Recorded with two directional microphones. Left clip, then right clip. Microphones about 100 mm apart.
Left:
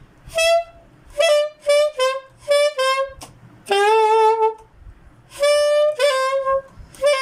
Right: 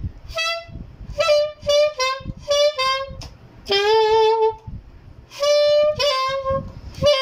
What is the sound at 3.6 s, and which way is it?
Saxophone, 35° left (ahead or behind).